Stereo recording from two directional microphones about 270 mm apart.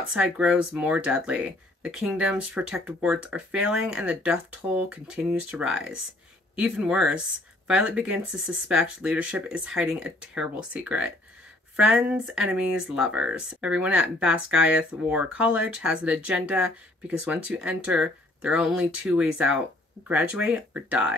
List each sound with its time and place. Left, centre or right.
0.1 s speech: centre